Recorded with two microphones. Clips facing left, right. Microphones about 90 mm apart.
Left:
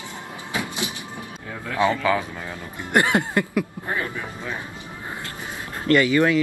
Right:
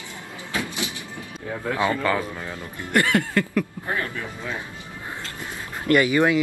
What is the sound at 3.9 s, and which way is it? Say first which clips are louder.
Speech: even; 10° left (ahead or behind).